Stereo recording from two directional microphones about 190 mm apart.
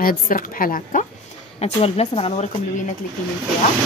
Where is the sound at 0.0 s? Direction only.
50° left (ahead or behind).